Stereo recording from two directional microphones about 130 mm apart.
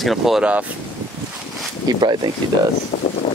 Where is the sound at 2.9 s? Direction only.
45° left (ahead or behind).